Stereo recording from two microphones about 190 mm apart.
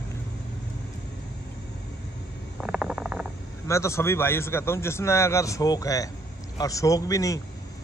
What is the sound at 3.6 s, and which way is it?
A man's voice, 15° left (ahead or behind).